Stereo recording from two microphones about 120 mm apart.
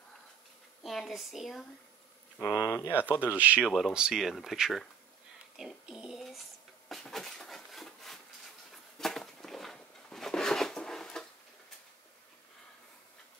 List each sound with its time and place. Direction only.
0.8 s speech: centre (ahead or behind)
2.3 s speech: 25° left (ahead or behind)
3.3 s speech: 15° right (ahead or behind)
3.6 s speech: centre (ahead or behind)
5.6 s a sound: 5° right (ahead or behind)